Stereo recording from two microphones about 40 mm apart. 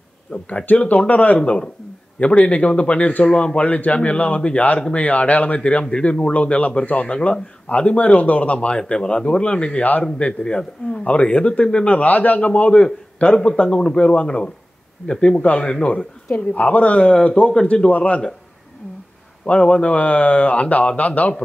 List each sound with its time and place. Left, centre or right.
0.3 s speech: left
1.4 s speech: left
6.3 s speech: left
19.4 s speech: left